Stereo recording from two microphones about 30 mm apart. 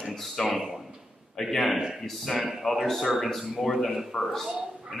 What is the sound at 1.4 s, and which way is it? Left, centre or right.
A man's voice, centre.